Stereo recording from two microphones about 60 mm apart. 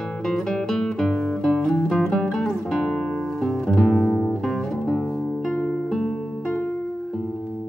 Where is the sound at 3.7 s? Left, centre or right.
Centre.